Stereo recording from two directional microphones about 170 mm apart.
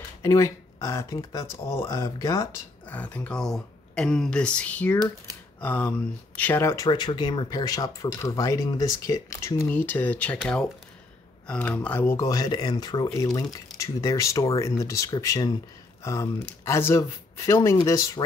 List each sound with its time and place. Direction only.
0.2 s speech: 15° left (ahead or behind)
4.9 s speech: 20° right (ahead or behind)
5.6 s speech: 10° left (ahead or behind)
6.9 s speech: 25° left (ahead or behind)